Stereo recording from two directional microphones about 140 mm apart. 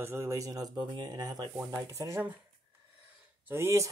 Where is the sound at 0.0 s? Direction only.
20° right (ahead or behind).